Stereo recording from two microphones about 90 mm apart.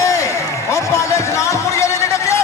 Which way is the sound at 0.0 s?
35° left (ahead or behind).